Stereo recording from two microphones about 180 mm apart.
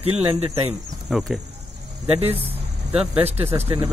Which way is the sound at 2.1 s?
35° right (ahead or behind).